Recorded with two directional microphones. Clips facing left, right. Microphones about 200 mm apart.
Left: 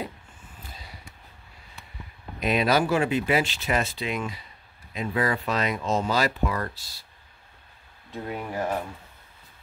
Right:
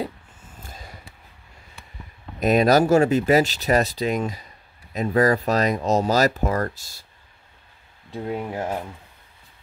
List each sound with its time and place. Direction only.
0.7 s a sound: 45° right (ahead or behind)
2.4 s speech: 45° right (ahead or behind)
8.1 s speech: 25° right (ahead or behind)